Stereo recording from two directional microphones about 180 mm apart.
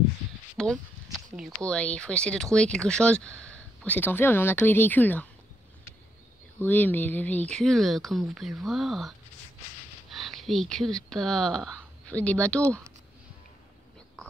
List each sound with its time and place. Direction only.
0.6 s speech: centre (ahead or behind)
6.6 s speech: 10° left (ahead or behind)
10.1 s a sound: centre (ahead or behind)
11.1 s speech: 5° left (ahead or behind)